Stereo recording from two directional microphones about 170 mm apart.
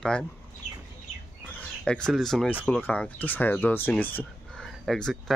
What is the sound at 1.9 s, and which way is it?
Speech, 5° left (ahead or behind).